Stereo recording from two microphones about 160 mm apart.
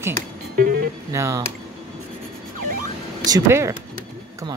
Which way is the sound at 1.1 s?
20° right (ahead or behind).